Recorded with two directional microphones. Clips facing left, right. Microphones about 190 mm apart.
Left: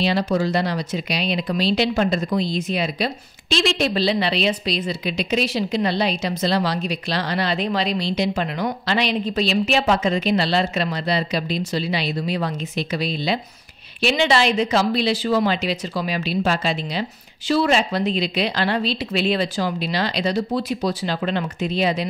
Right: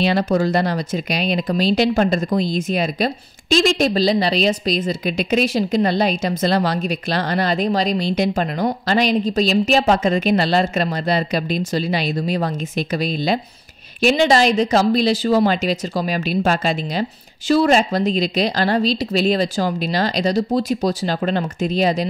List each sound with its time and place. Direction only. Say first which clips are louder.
0.0 s speech: right 3 dB; 55° right (ahead or behind)